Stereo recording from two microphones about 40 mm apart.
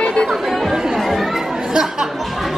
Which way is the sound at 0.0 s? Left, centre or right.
Left.